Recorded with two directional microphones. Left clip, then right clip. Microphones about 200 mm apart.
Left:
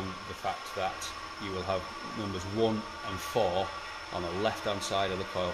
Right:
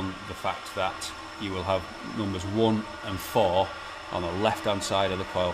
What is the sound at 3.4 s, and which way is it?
Speech, 40° right (ahead or behind).